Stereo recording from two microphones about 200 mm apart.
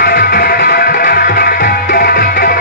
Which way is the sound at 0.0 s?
50° left (ahead or behind).